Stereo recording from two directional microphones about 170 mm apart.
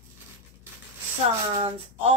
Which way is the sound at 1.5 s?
35° right (ahead or behind).